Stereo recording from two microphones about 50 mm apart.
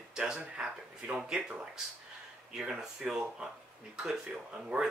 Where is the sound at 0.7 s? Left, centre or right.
Right.